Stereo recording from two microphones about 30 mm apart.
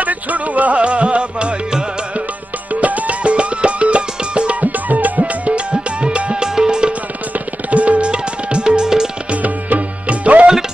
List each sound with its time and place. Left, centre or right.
0.0 s music: right
0.7 s music: right
2.7 s music: right
3.3 s music: right
4.6 s music: right
5.2 s music: right
6.4 s music: right
6.9 s music: right
8.1 s music: right
8.6 s music: right
9.3 s music: right